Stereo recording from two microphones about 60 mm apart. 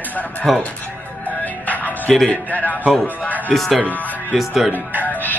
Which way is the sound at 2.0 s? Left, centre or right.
Centre.